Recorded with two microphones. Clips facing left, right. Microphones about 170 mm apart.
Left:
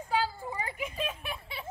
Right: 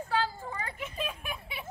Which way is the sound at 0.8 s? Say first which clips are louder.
Left 2 dB; 5° left (ahead or behind).